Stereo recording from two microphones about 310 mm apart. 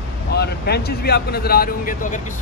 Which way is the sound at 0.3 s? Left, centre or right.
Left.